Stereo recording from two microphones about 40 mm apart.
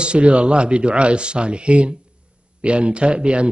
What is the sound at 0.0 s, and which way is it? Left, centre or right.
A man's voice, right.